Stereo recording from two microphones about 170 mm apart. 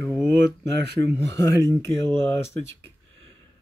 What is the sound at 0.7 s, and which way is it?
Speech, 80° right.